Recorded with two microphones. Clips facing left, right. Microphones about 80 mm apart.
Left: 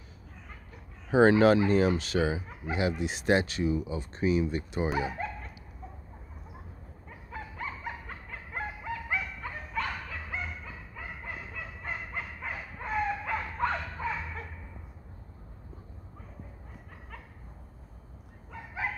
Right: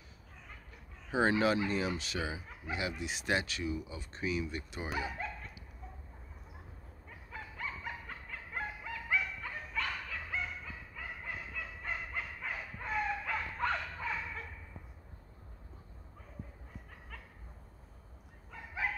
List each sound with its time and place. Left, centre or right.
1.3 s fowl: left
2.3 s speech: left
4.9 s dog: left
7.1 s a sound: left